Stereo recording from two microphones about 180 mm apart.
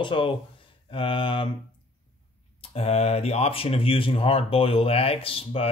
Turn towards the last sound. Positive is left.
turn(degrees=30)  # may be behind; listen again after turning